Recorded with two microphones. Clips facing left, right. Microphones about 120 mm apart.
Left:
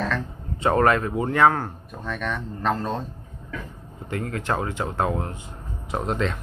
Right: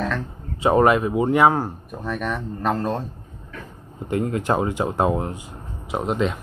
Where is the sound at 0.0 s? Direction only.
5° right (ahead or behind).